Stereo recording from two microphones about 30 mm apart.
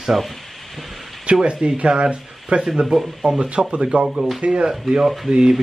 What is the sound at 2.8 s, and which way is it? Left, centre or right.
Speech, centre.